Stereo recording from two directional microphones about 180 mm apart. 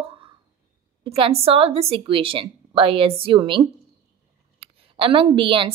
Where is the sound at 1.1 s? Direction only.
30° right (ahead or behind).